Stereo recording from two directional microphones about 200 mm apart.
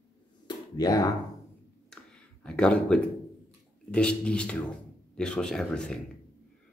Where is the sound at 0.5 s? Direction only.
20° left (ahead or behind).